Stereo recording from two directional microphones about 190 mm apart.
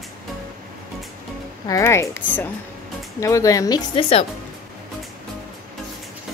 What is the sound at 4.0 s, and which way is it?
Speech, 30° left (ahead or behind).